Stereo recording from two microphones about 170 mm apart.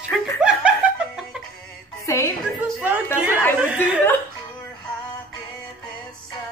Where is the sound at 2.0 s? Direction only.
15° left (ahead or behind).